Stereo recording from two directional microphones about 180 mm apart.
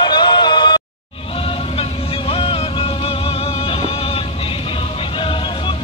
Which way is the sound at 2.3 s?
30° left (ahead or behind).